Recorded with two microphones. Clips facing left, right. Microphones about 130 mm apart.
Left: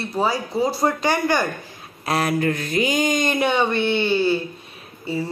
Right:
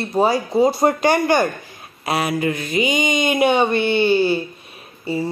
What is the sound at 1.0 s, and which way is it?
Speech, 55° right (ahead or behind).